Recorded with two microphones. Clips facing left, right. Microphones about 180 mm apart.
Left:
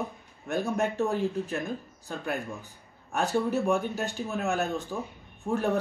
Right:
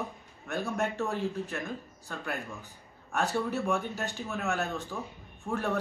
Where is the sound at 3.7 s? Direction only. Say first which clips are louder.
Left 4 dB; 10° left (ahead or behind).